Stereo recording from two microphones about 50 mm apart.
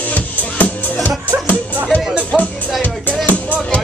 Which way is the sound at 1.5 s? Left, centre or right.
Left.